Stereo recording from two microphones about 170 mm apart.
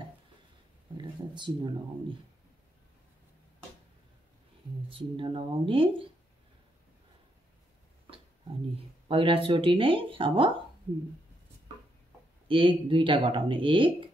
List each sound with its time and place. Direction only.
0.9 s speech: 25° right (ahead or behind)
4.8 s speech: 30° right (ahead or behind)
9.0 s speech: 30° right (ahead or behind)
12.4 s speech: 30° right (ahead or behind)